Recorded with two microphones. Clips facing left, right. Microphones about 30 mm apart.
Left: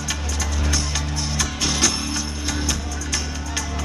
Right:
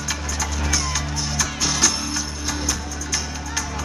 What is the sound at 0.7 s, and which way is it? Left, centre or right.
Music, centre.